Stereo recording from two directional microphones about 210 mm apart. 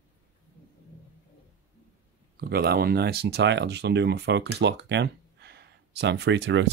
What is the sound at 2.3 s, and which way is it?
Speech, 45° right (ahead or behind).